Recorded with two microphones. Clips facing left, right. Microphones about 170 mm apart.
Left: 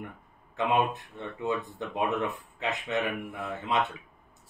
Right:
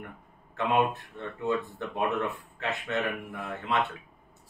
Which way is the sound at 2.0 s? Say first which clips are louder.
Even; 15° left (ahead or behind).